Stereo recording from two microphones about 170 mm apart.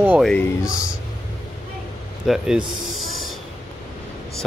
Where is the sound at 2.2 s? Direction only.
5° right (ahead or behind).